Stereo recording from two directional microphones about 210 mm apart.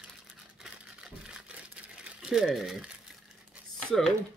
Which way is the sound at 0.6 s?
5° right (ahead or behind).